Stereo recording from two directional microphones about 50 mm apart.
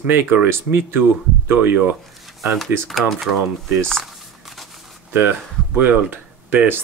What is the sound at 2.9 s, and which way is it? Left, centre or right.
Speech, centre.